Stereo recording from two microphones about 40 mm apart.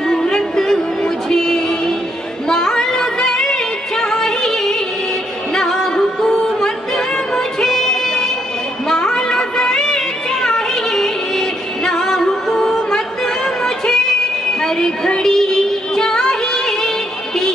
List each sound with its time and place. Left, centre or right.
0.1 s music: centre
8.8 s a sound: centre
14.6 s music: centre